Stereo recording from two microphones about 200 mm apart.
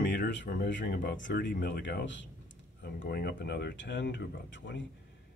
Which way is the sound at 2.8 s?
50° left (ahead or behind).